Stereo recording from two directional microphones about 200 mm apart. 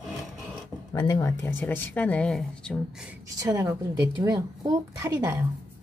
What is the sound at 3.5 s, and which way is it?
A woman's voice, 15° right (ahead or behind).